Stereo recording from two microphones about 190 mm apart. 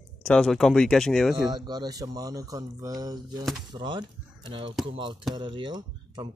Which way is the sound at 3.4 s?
Centre (ahead or behind).